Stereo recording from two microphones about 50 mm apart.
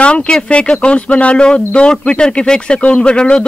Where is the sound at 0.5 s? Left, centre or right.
Left.